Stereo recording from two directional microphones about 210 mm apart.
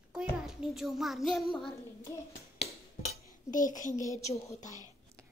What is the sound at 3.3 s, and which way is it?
Speech, 40° left (ahead or behind).